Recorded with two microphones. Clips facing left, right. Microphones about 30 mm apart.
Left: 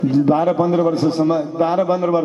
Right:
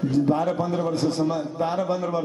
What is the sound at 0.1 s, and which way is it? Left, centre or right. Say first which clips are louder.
A man's voice: left 6 dB; left.